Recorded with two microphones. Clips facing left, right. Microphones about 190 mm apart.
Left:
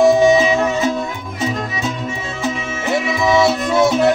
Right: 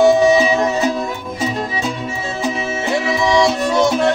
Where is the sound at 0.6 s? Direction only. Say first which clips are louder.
Even; 35° right (ahead or behind).